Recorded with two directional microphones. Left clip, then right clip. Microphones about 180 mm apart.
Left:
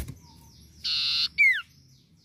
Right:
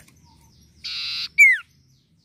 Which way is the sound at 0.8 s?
20° right (ahead or behind).